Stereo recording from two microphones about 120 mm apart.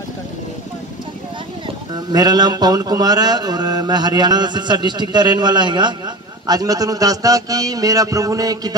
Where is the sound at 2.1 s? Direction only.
35° right (ahead or behind).